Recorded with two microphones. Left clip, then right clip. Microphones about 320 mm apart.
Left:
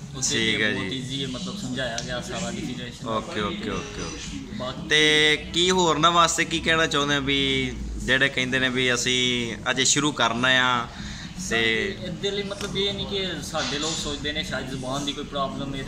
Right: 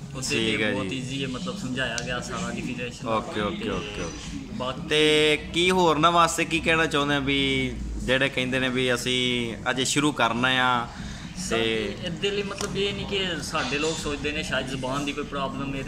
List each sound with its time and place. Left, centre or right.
0.2 s speech: centre
3.1 s speech: centre